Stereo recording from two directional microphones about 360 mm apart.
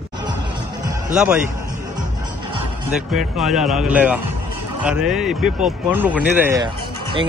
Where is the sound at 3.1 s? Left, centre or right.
Centre.